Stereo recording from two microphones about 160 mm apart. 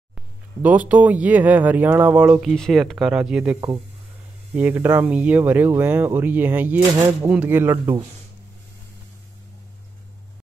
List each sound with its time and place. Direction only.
0.1 s speech: 10° right (ahead or behind)
2.5 s speech: centre (ahead or behind)
4.6 s speech: 10° right (ahead or behind)
7.7 s speech: 30° right (ahead or behind)